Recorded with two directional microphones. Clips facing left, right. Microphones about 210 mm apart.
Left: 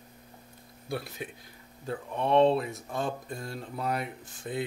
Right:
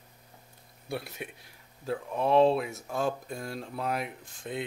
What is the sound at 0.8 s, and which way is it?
Speech, centre (ahead or behind).